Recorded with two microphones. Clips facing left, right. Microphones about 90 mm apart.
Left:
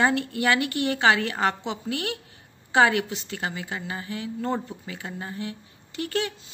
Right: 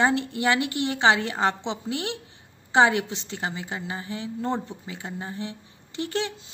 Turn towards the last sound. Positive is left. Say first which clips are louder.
# left 1 dB
turn(degrees=-25)  # may be behind; listen again after turning